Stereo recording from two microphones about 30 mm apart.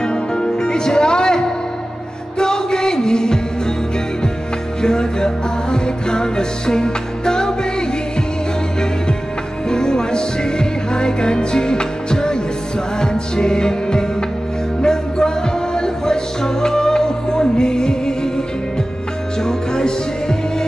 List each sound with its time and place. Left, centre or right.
0.0 s music: left
4.8 s music: left
9.7 s music: left
19.4 s music: left